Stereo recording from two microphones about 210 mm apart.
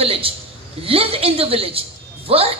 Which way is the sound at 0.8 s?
25° right (ahead or behind).